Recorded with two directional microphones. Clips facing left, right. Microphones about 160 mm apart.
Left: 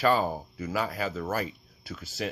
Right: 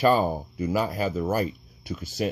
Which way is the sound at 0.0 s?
20° right (ahead or behind).